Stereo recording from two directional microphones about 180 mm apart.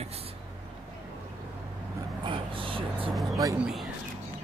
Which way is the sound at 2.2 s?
30° right (ahead or behind).